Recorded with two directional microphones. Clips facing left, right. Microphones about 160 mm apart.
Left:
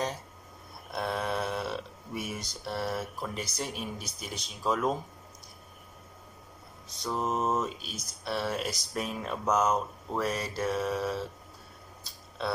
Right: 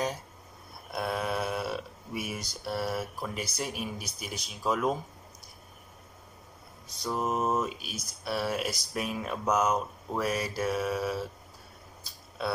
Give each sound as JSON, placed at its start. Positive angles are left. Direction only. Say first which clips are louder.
{"t": 0.9, "sound": "speech", "louder": "even", "side_deg": -5}
{"t": 7.0, "sound": "speech", "louder": "right 1 dB", "side_deg": -5}
{"t": 12.0, "sound": "a sound", "louder": "right 1 dB", "side_deg": -5}